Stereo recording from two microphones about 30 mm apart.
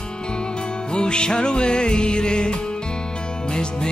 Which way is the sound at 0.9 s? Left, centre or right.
Left.